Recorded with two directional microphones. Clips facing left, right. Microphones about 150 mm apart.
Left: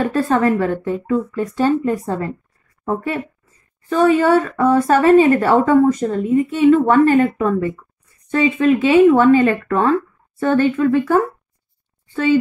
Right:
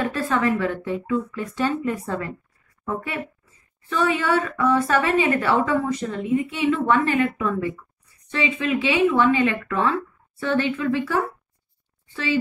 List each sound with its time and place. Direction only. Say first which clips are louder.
0.0 s a woman's voice: left 6 dB; 40° left (ahead or behind)